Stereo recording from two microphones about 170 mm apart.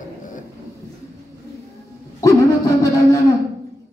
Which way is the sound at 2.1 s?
20° left (ahead or behind).